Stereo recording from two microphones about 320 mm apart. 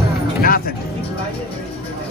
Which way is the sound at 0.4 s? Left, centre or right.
Left.